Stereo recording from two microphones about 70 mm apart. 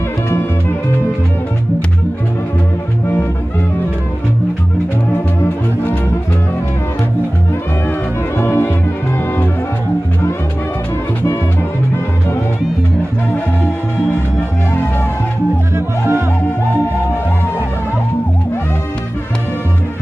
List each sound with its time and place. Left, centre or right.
5.1 s music: left
8.4 s music: left
15.7 s music: right